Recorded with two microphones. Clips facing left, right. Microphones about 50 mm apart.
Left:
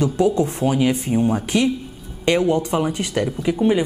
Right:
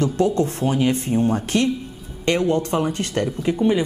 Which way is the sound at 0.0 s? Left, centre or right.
Centre.